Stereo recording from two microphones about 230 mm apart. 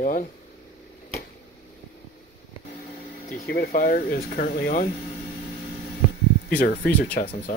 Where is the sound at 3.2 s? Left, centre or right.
Left.